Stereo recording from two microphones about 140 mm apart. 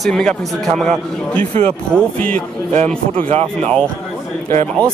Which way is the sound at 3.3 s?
45° right (ahead or behind).